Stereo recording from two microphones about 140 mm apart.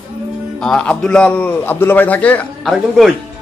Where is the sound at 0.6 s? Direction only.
5° left (ahead or behind).